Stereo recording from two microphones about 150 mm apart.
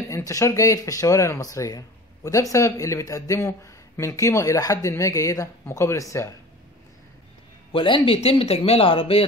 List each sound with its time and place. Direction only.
0.1 s speech: 20° left (ahead or behind)
7.7 s speech: 35° left (ahead or behind)